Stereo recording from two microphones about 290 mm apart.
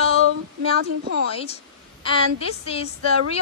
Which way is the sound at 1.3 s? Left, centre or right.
Centre.